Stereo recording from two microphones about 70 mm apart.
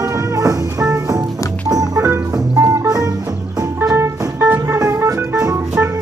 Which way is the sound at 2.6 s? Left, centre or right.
Right.